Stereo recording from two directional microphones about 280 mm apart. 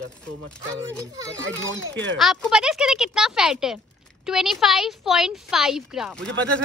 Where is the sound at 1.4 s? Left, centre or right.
Right.